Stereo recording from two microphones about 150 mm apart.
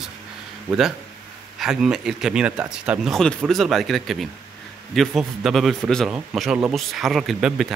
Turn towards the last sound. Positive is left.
turn(degrees=-5)  # may be behind; listen again after turning